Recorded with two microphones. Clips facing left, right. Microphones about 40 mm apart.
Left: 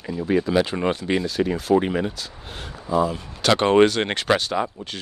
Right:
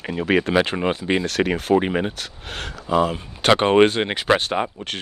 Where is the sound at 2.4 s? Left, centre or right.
Right.